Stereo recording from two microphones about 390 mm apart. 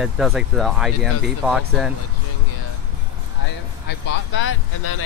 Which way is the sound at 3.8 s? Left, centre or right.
Left.